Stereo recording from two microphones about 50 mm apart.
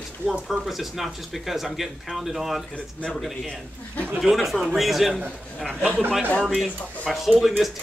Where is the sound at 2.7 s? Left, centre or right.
Left.